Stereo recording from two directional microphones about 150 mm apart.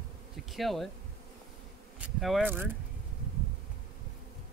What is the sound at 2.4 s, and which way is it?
Speech, 15° right (ahead or behind).